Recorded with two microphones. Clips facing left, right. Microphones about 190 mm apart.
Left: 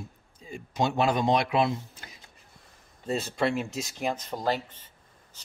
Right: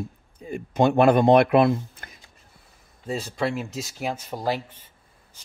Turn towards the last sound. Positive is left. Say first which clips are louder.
# right 2 dB
turn(degrees=-10)  # may be behind; listen again after turning